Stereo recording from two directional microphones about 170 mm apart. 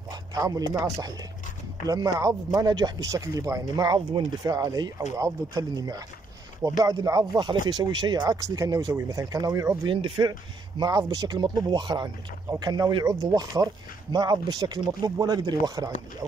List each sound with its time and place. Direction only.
0.1 s speech: 20° right (ahead or behind)